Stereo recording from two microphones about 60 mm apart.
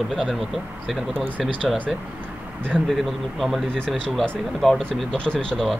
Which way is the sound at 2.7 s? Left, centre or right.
Centre.